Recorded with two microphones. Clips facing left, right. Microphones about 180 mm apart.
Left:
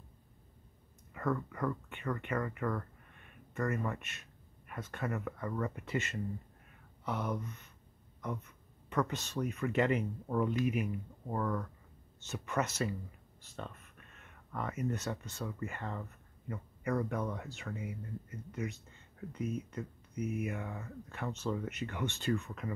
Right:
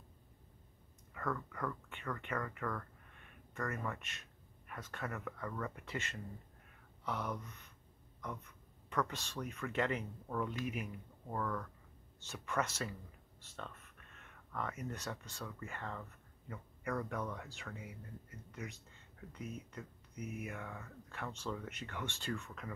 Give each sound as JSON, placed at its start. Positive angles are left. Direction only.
{"t": 1.1, "sound": "speech", "side_deg": 10}
{"t": 8.9, "sound": "speech", "side_deg": 5}
{"t": 11.2, "sound": "speech", "side_deg": 15}
{"t": 14.5, "sound": "speech", "side_deg": 10}